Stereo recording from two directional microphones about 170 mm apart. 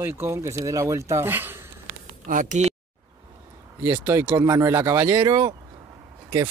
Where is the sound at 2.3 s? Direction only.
45° right (ahead or behind).